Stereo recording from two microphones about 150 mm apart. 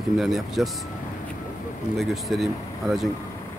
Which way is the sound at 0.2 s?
Centre (ahead or behind).